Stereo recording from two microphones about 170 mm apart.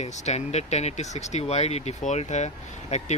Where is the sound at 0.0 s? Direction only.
40° left (ahead or behind).